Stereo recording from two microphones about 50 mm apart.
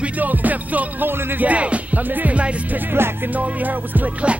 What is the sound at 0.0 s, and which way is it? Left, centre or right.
Music, right.